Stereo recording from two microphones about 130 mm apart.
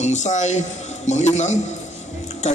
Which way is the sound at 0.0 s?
65° left (ahead or behind).